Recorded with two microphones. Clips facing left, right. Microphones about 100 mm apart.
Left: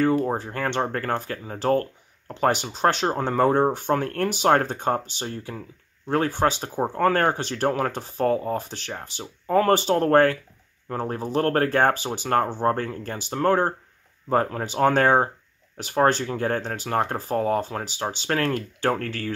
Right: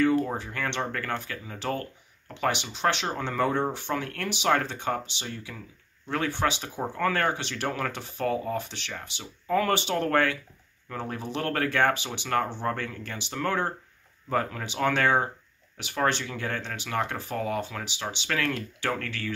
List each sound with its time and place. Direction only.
0.0 s speech: 40° left (ahead or behind)